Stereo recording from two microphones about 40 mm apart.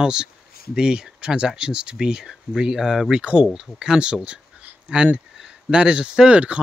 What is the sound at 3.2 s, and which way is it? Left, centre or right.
Speech, right.